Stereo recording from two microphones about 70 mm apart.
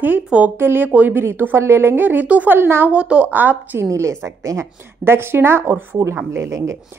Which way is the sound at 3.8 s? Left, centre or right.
Right.